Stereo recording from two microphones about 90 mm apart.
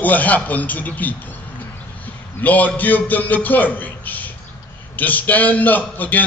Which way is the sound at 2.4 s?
20° left (ahead or behind).